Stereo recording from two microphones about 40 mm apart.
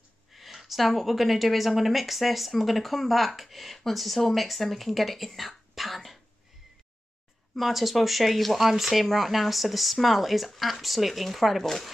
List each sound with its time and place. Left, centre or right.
0.3 s a woman's voice: centre
7.5 s a woman's voice: centre